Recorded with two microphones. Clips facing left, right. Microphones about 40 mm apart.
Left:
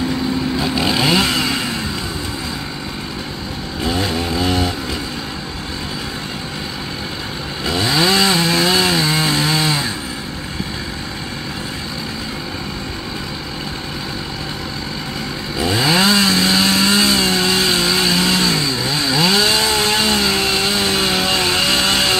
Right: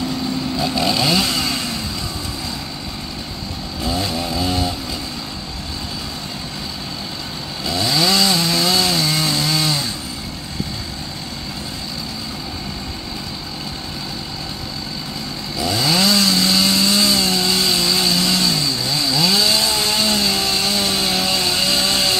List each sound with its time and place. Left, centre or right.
0.6 s chainsaw: left
3.8 s chainsaw: left
7.6 s chainsaw: left
15.6 s chainsaw: left